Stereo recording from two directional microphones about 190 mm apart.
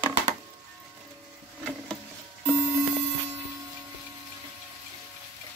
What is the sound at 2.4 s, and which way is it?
Alarm clock, 5° right (ahead or behind).